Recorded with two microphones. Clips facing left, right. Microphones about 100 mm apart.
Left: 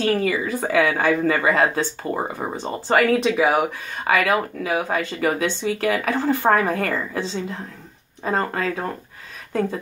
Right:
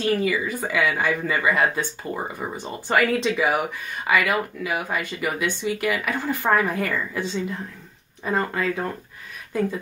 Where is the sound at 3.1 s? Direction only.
20° left (ahead or behind).